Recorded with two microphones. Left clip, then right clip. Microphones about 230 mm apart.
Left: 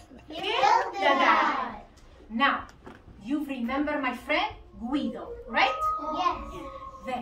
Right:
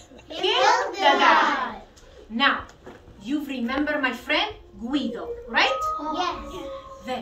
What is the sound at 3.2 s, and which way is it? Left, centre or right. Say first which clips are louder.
A woman's voice: right 3 dB; centre.